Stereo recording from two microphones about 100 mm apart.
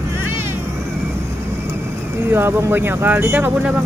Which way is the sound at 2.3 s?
20° right (ahead or behind).